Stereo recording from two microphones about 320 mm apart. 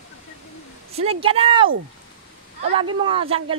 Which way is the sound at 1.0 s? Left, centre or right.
Centre.